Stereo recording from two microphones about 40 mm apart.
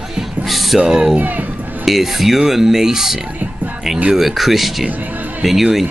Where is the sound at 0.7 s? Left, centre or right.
Centre.